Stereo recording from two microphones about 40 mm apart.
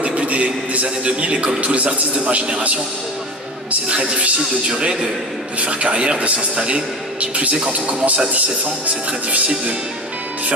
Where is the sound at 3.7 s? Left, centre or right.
Right.